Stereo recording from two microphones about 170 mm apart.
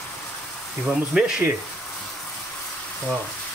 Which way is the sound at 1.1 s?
5° right (ahead or behind).